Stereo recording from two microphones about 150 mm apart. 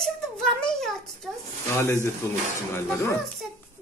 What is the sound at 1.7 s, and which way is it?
Speech, 15° left (ahead or behind).